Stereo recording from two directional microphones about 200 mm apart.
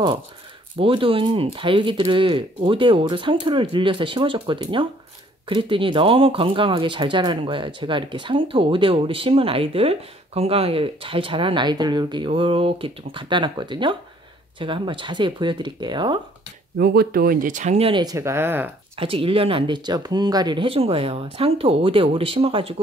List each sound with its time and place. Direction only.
0.7 s speech: 25° right (ahead or behind)
16.7 s speech: 50° right (ahead or behind); by 18.7 s 10° right (ahead or behind)
18.9 s speech: 25° right (ahead or behind)